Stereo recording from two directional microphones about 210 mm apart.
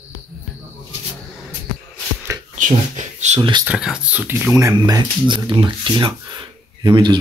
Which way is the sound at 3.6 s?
5° right (ahead or behind).